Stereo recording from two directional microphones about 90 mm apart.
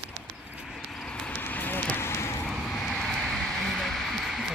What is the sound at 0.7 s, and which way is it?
Vehicle, 5° left (ahead or behind).